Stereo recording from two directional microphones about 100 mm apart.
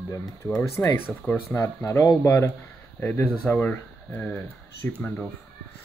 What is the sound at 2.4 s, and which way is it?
Speech, 20° left (ahead or behind).